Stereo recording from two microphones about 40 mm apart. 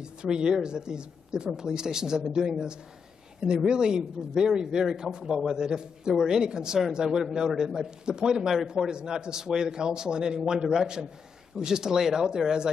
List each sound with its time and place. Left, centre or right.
0.0 s speech: centre